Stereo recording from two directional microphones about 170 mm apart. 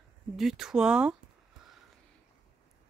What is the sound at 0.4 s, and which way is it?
Speech, centre (ahead or behind).